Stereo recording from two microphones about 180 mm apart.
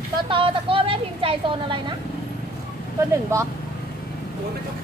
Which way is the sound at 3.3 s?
15° right (ahead or behind).